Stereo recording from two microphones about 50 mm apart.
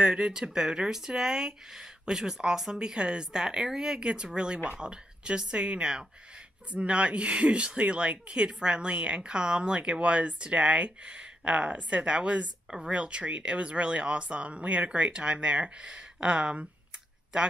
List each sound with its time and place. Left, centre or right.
0.0 s speech: centre